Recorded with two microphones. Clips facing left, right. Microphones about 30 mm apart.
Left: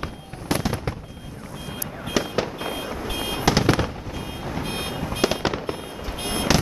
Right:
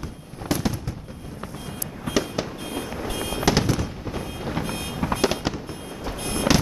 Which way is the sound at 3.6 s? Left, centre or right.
Left.